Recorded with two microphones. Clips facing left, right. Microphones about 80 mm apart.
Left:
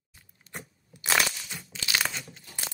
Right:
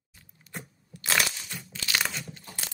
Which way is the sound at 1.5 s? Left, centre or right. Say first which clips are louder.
Right 1 dB; centre.